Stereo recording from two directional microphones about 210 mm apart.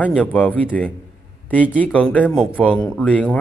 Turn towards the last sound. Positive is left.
turn(degrees=5)  # may be behind; listen again after turning